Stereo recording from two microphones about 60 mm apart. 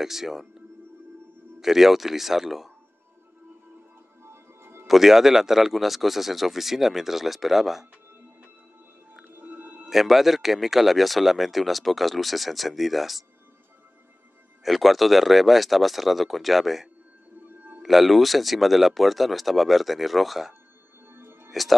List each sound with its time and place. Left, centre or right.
0.0 s speech: centre
4.2 s music: right
4.8 s speech: centre
9.3 s music: right
9.8 s speech: centre
14.6 s speech: centre
21.1 s music: right
21.5 s speech: centre